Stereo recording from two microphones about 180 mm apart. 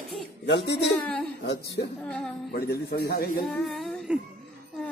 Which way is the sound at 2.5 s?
60° left (ahead or behind).